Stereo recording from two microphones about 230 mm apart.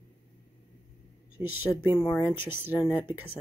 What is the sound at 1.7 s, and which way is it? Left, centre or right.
Speech, centre.